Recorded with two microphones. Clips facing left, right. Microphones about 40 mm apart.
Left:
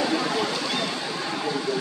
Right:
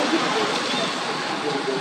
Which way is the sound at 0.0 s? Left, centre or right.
Right.